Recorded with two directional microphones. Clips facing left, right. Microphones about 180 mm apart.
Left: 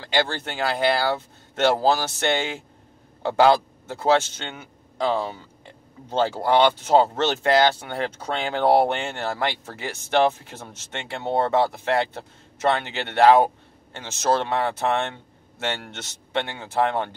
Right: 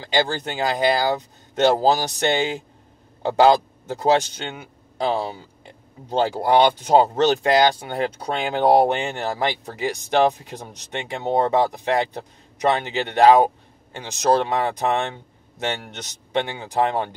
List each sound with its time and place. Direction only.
0.0 s a man's voice: 15° right (ahead or behind)